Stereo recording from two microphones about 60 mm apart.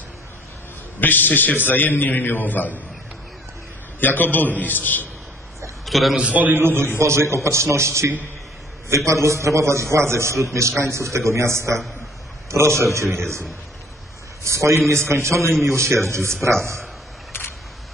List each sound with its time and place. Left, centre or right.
0.9 s a man's voice: left
4.0 s a man's voice: left
5.9 s a man's voice: centre
6.1 s a man's voice: right
7.0 s a man's voice: right